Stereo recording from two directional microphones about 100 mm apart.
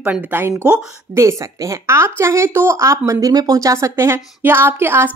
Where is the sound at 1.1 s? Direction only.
30° right (ahead or behind).